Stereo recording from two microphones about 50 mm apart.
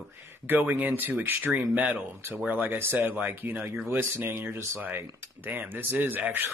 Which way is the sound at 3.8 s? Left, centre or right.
Right.